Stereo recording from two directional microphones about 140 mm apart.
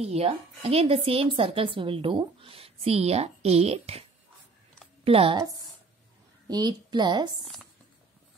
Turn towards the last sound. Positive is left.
turn(degrees=-30)  # may be behind; listen again after turning